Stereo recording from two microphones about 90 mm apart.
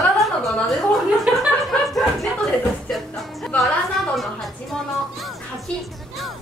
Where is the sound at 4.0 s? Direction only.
Centre (ahead or behind).